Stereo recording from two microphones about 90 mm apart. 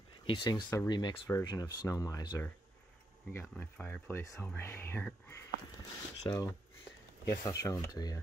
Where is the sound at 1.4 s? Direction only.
50° left (ahead or behind).